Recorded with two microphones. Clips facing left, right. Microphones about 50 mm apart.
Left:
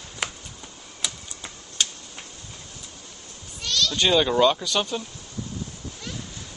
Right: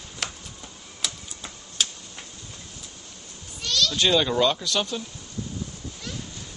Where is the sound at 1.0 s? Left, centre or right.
Centre.